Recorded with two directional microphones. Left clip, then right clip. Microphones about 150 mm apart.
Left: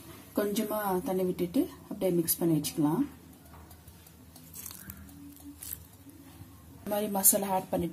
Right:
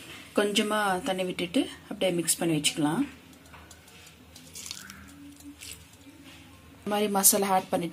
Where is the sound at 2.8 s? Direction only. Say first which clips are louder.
Right 1 dB; 20° right (ahead or behind).